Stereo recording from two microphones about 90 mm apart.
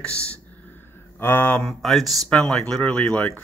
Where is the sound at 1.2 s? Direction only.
25° left (ahead or behind).